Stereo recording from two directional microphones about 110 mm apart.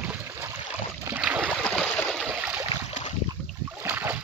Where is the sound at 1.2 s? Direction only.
15° right (ahead or behind).